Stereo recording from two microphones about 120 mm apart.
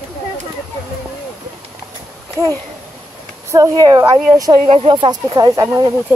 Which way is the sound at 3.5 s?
30° right (ahead or behind).